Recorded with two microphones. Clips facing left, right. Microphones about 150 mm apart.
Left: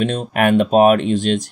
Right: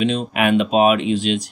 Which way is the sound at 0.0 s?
50° left (ahead or behind).